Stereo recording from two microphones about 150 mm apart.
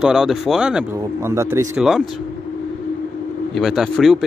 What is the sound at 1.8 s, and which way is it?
Speech, centre (ahead or behind).